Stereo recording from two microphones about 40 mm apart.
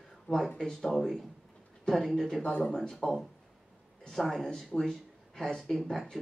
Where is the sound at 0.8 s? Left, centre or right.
Centre.